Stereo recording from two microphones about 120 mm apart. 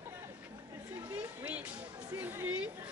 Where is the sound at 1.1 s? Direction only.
10° right (ahead or behind).